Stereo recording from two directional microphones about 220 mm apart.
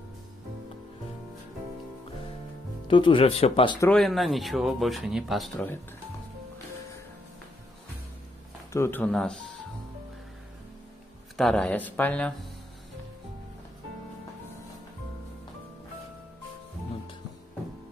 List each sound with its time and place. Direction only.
2.9 s speech: 20° left (ahead or behind)
3.8 s speech: centre (ahead or behind)
8.7 s speech: 10° left (ahead or behind)
11.3 s speech: centre (ahead or behind)